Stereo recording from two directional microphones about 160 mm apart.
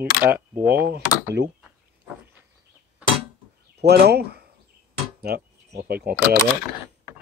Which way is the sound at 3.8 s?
90° right.